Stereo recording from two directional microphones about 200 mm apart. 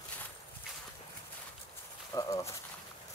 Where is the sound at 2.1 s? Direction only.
15° left (ahead or behind).